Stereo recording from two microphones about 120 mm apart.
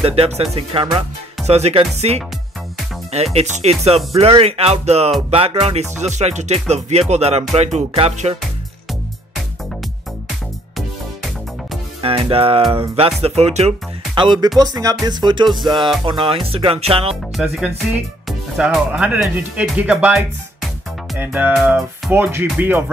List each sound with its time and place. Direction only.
0.0 s music: 55° right (ahead or behind)
3.3 s music: 70° right (ahead or behind)
12.0 s speech: 50° right (ahead or behind)
12.9 s music: 55° right (ahead or behind)
14.1 s music: 40° right (ahead or behind)
16.1 s speech: 45° right (ahead or behind)
17.1 s speech: 5° right (ahead or behind)
21.2 s speech: 15° right (ahead or behind)